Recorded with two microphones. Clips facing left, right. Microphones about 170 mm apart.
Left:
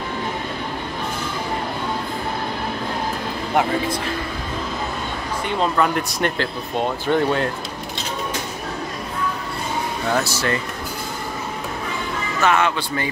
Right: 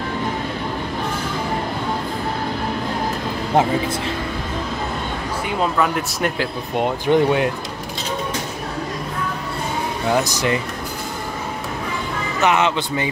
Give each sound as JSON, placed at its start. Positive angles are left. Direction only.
{"t": 5.5, "sound": "speech", "side_deg": -5}
{"t": 10.1, "sound": "speech", "side_deg": -15}
{"t": 12.4, "sound": "a man's voice", "side_deg": -20}